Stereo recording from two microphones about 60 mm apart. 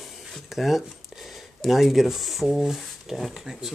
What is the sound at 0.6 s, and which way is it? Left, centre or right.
Speech, centre.